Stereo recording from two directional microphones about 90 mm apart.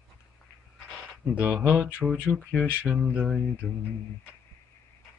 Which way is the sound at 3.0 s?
15° right (ahead or behind).